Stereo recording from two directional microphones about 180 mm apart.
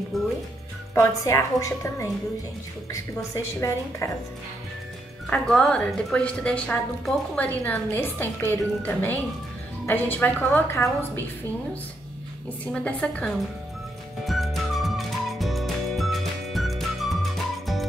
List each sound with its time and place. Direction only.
0.9 s speech: 15° left (ahead or behind)
5.2 s speech: 5° left (ahead or behind)
12.7 s speech: 5° left (ahead or behind)
14.2 s music: centre (ahead or behind)